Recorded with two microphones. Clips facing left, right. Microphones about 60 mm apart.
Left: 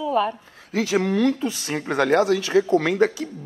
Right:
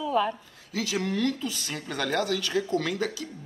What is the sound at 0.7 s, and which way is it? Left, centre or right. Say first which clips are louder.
Speech: left 8 dB; left.